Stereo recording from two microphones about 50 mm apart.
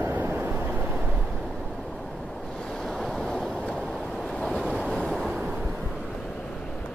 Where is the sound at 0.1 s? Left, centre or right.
Right.